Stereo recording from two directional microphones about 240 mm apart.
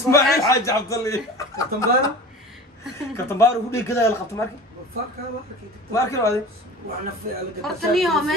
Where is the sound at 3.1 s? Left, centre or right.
Centre.